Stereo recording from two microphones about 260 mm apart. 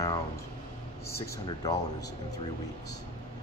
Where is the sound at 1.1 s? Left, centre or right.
Centre.